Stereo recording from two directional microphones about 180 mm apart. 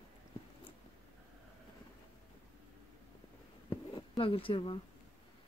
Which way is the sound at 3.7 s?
30° left (ahead or behind).